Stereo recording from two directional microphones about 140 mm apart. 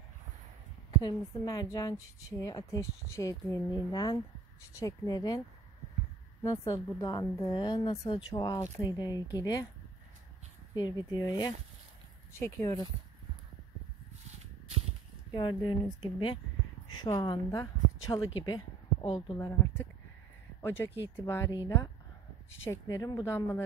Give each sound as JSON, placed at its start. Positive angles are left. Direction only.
{"t": 1.0, "sound": "a woman's voice", "side_deg": 30}
{"t": 6.4, "sound": "a woman's voice", "side_deg": 20}
{"t": 10.7, "sound": "a woman's voice", "side_deg": 30}
{"t": 15.3, "sound": "a woman's voice", "side_deg": 35}